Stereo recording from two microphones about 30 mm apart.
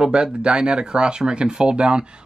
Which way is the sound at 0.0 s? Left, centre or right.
Right.